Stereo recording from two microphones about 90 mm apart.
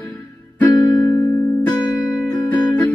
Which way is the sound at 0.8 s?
50° left (ahead or behind).